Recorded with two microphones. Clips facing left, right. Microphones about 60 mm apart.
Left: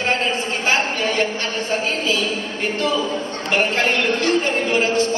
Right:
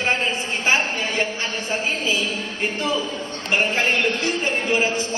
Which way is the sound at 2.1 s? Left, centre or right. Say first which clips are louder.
Left 2 dB; centre.